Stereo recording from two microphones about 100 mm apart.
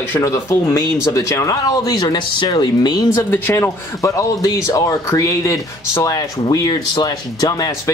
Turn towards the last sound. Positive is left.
turn(degrees=40)  # may be behind; listen again after turning